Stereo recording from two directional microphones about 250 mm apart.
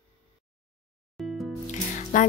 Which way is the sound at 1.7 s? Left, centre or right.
Left.